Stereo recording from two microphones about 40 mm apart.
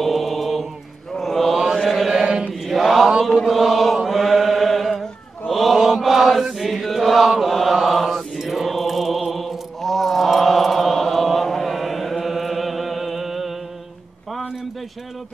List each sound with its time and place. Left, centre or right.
0.0 s mantra: centre
1.9 s chant: centre
5.5 s mantra: centre
6.6 s chant: centre
7.2 s mantra: centre